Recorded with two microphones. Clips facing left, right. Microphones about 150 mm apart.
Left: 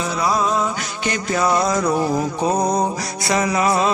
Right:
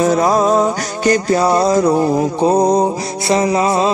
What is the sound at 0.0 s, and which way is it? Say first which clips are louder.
Music: right 8 dB; 45° right (ahead or behind).